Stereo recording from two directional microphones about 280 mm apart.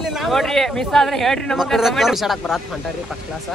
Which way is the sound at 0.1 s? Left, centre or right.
Centre.